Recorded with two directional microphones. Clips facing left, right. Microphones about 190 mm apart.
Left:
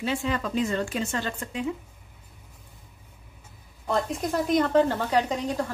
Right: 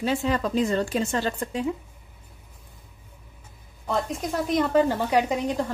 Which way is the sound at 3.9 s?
Centre (ahead or behind).